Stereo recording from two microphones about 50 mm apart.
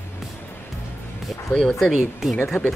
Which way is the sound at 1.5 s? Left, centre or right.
Centre.